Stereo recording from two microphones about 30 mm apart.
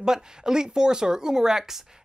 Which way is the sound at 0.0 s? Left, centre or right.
Right.